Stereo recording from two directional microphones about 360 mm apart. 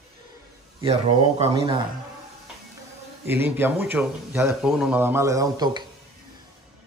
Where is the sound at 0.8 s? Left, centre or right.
Centre.